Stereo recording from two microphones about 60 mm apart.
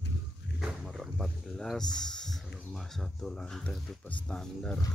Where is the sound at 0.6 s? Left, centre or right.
Centre.